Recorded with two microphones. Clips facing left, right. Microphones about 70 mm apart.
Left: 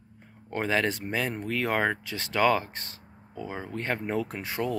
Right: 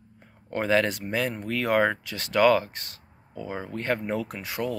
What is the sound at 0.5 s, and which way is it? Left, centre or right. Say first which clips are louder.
Speech: right 3 dB; centre.